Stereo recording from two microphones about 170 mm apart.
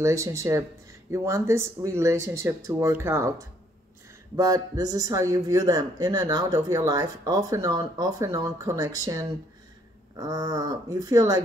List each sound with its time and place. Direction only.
0.0 s speech: 15° right (ahead or behind)